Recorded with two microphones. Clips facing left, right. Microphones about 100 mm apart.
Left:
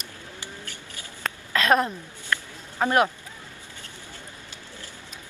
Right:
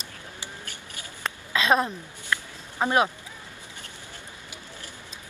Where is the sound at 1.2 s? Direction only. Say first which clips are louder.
Left 1 dB; 15° right (ahead or behind).